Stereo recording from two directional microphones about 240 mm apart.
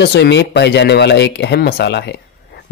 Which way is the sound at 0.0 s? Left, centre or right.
Left.